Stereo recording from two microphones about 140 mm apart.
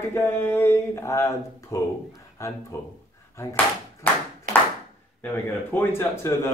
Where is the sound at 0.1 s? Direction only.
15° left (ahead or behind).